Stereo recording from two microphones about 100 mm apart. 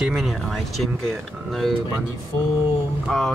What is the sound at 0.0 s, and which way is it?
Speech, centre (ahead or behind).